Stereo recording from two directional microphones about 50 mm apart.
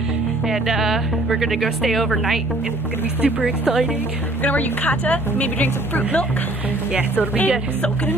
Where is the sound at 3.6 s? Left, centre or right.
Centre.